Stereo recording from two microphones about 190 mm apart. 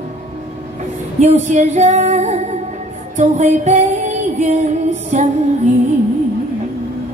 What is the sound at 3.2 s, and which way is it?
Female singing, 40° right (ahead or behind).